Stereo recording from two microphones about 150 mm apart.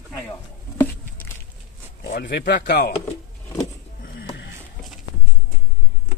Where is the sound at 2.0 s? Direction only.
90° left.